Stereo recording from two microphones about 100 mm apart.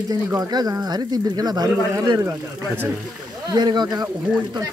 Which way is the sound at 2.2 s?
20° right (ahead or behind).